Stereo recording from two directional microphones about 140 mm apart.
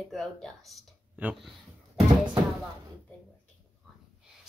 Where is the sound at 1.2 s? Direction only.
10° right (ahead or behind).